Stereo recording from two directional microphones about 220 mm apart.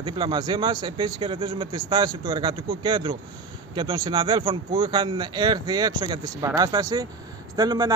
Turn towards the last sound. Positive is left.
turn(degrees=-20)  # may be behind; listen again after turning